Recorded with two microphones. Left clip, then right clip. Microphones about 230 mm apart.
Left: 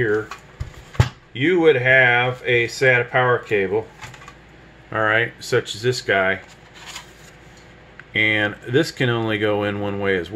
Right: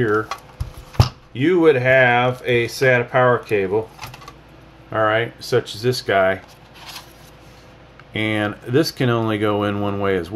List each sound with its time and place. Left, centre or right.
1.3 s speech: centre
4.8 s speech: centre
8.1 s speech: centre